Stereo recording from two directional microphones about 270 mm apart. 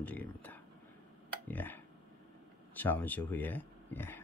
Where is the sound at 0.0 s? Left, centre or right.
Centre.